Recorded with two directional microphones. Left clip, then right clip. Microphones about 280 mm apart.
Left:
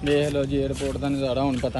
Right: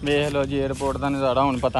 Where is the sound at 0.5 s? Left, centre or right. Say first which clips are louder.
Right 2 dB; centre.